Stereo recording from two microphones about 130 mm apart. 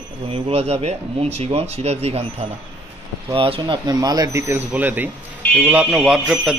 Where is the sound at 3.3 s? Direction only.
40° right (ahead or behind); by 6.6 s 5° right (ahead or behind).